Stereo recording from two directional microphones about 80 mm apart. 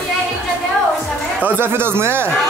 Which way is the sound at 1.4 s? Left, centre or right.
Right.